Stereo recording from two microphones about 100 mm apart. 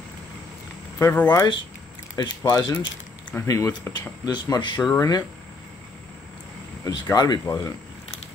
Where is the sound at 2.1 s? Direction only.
45° left (ahead or behind).